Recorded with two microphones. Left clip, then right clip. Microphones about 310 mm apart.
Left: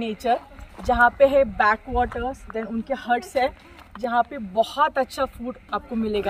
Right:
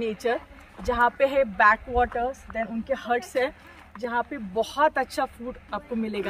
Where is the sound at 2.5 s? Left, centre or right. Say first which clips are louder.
Even; left.